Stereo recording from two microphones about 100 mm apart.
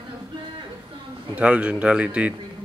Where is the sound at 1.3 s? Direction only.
15° right (ahead or behind).